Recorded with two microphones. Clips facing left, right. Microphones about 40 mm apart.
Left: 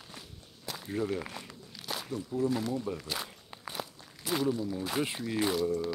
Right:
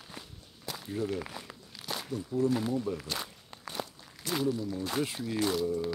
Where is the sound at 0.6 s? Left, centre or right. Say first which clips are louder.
Even; centre.